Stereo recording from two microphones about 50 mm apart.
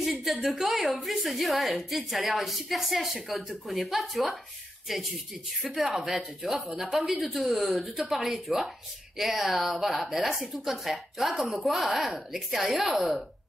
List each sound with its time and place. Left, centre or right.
0.0 s a woman's voice: centre
5.7 s speech: centre
5.9 s a woman's voice: centre